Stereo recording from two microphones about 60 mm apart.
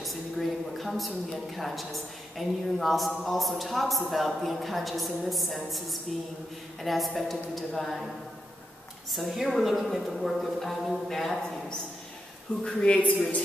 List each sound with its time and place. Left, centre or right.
0.0 s a woman's voice: centre
9.1 s a woman's voice: centre
12.6 s speech: left